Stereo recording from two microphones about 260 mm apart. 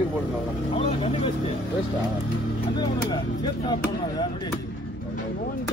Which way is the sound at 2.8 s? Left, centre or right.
Centre.